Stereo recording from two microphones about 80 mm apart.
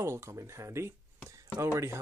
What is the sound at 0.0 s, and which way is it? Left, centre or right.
Speech, right.